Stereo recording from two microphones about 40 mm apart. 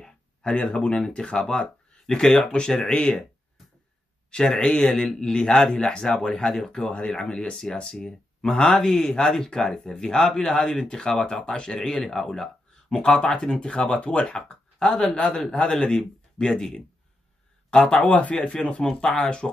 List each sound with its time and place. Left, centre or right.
0.4 s speech: left
0.9 s speech: centre
4.3 s speech: left
13.2 s speech: left
14.2 s speech: centre
17.9 s speech: left